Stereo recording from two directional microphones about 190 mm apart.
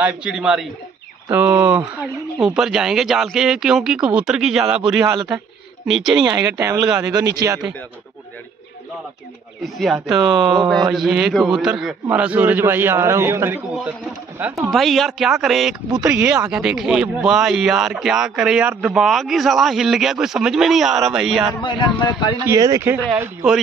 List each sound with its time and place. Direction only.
0.0 s speech: 5° right (ahead or behind)
6.2 s speech: 20° right (ahead or behind)
9.6 s a man's voice: centre (ahead or behind)
21.6 s speech: 25° left (ahead or behind)
22.5 s a man's voice: 15° right (ahead or behind)